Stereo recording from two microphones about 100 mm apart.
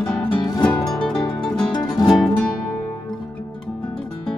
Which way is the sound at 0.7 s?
5° left (ahead or behind).